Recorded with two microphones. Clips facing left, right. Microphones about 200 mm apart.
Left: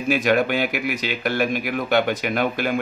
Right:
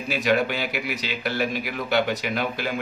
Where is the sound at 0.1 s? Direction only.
50° left (ahead or behind).